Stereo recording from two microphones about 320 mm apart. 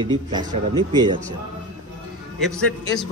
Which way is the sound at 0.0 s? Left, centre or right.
Centre.